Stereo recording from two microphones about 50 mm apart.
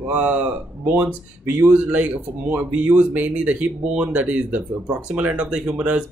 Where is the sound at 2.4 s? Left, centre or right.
Right.